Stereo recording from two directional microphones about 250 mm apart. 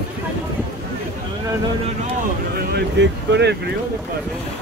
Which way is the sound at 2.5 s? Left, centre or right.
Right.